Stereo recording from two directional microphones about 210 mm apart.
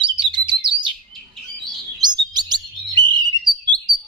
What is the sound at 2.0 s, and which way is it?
Chirp, 20° right (ahead or behind).